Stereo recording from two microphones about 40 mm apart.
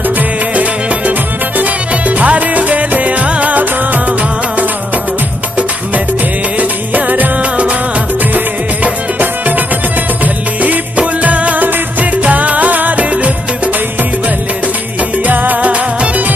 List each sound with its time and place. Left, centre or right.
1.6 s music: right
6.9 s music: right
10.2 s music: right
15.2 s music: right